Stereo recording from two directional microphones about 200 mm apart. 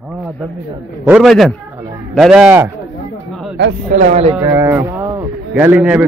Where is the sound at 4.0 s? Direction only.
35° right (ahead or behind).